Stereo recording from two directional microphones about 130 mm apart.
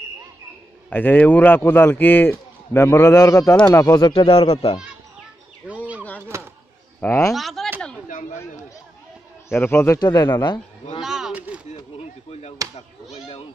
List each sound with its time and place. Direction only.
0.8 s speech: 15° left (ahead or behind)
4.0 s a man's voice: 40° left (ahead or behind)
5.6 s bird: 10° right (ahead or behind)
7.0 s speech: 20° left (ahead or behind)
7.3 s speech: centre (ahead or behind)
8.1 s chatter: 75° left (ahead or behind)
9.5 s speech: 15° left (ahead or behind)
9.9 s speech: 30° left (ahead or behind)
11.0 s a sound: 5° right (ahead or behind)
12.0 s chop: 55° left (ahead or behind)